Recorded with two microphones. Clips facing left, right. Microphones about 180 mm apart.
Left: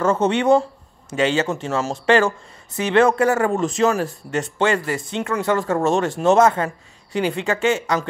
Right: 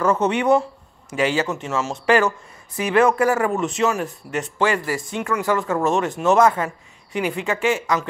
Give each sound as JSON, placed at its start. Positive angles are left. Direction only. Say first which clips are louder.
{"t": 0.0, "sound": "speech", "louder": "left 1 dB", "side_deg": 25}